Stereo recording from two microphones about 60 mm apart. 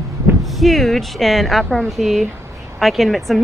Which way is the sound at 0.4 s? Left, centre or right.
Centre.